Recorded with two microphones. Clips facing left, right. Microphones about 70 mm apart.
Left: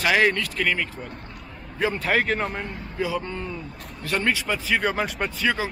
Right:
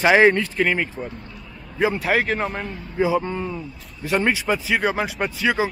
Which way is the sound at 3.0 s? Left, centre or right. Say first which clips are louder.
Right 7 dB; right.